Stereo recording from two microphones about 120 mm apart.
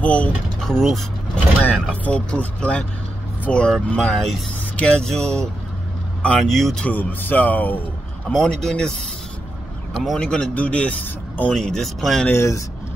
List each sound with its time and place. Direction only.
0.0 s speech: 10° left (ahead or behind)
10.0 s speech: 5° left (ahead or behind)
12.3 s speech: 25° left (ahead or behind)